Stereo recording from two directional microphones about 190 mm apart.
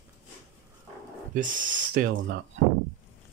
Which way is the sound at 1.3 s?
45° right (ahead or behind).